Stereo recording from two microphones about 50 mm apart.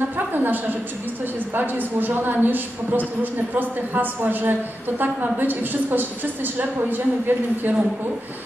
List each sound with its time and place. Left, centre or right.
0.3 s a woman's voice: right